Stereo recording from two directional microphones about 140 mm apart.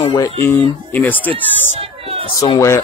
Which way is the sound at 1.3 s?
40° right (ahead or behind).